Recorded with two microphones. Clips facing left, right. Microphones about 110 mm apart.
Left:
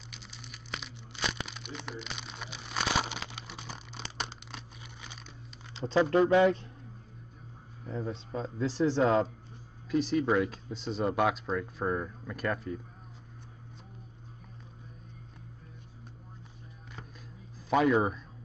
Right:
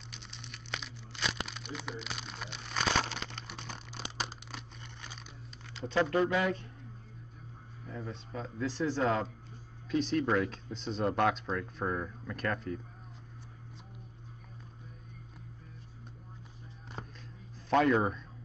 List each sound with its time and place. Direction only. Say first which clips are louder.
0.1 s crumpling: even; centre (ahead or behind)
5.7 s a sound: left 3 dB; 30° left (ahead or behind)
6.2 s a man's voice: left 7 dB; 30° left (ahead or behind)
7.9 s speech: left 6 dB; 30° left (ahead or behind)
9.8 s speech: left 2 dB; 5° left (ahead or behind)
17.6 s speech: left 1 dB; 5° left (ahead or behind)